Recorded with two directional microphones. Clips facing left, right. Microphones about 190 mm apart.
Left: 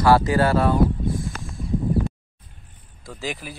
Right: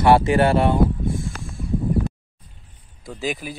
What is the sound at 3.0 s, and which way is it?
Speech, 15° right (ahead or behind).